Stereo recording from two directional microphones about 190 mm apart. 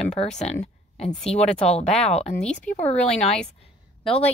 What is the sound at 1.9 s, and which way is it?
Speech, 5° left (ahead or behind).